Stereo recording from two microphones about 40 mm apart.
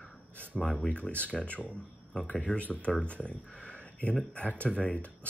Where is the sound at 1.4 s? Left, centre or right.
Left.